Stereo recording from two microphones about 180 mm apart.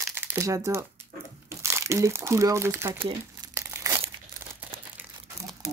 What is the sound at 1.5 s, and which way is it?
Speech, 15° right (ahead or behind).